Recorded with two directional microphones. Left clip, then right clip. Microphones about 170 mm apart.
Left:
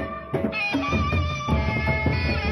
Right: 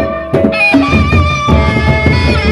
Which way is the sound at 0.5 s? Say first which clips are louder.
Right 15 dB; 65° right (ahead or behind).